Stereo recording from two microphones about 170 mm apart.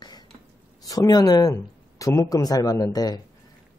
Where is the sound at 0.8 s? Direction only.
20° left (ahead or behind).